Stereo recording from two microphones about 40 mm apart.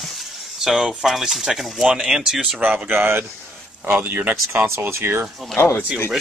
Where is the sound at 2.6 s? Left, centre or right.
Right.